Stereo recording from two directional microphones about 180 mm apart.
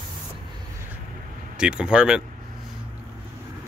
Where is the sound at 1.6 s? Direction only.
5° right (ahead or behind).